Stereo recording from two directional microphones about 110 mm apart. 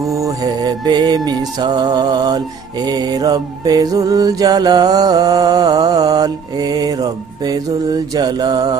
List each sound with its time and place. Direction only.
0.0 s music: 30° right (ahead or behind)